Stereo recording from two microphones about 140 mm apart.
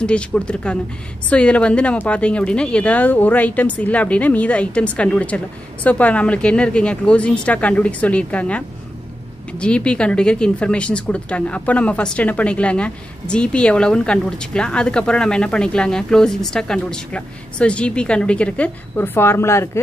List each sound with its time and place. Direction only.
0.0 s speech: 10° left (ahead or behind)